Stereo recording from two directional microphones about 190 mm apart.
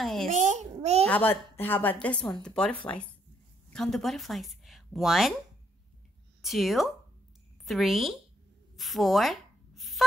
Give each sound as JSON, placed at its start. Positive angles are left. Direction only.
{"t": 0.0, "sound": "a child's voice", "side_deg": 0}
{"t": 0.3, "sound": "a child's voice", "side_deg": -40}
{"t": 1.0, "sound": "a woman's voice", "side_deg": 10}
{"t": 6.4, "sound": "speech", "side_deg": 0}
{"t": 8.7, "sound": "a sound", "side_deg": 0}